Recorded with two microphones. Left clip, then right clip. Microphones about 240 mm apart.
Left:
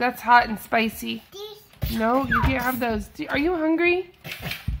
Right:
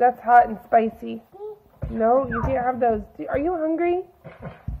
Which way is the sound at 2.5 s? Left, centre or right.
Centre.